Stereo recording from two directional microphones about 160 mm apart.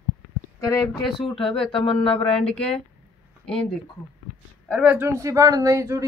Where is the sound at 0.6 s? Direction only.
20° left (ahead or behind).